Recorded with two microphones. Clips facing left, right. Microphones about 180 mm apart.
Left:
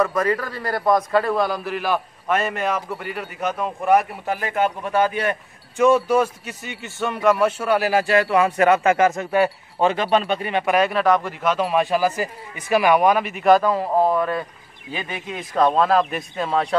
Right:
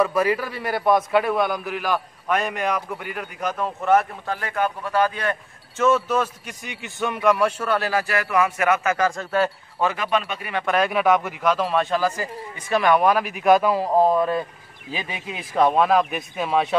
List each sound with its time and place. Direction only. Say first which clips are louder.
0.0 s a man's voice: even; 10° right (ahead or behind); by 7.9 s 10° left (ahead or behind)
7.9 s speech: left 5 dB; 25° left (ahead or behind)
10.5 s speech: left 2 dB; 10° left (ahead or behind)
10.9 s a man's voice: left 1 dB; 5° right (ahead or behind)